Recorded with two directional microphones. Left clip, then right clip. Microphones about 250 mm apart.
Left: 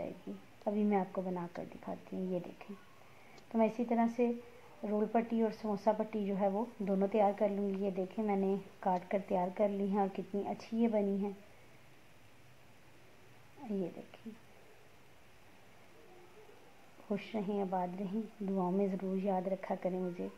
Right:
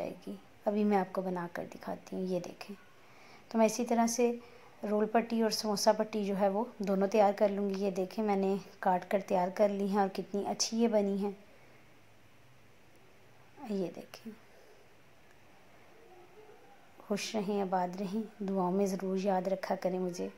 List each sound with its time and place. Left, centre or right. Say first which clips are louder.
0.3 s a woman's voice: right 5 dB; right
17.1 s a woman's voice: right 4 dB; centre